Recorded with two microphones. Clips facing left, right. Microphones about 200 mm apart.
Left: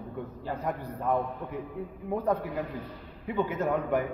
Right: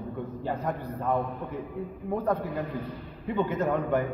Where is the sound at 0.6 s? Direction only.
10° left (ahead or behind).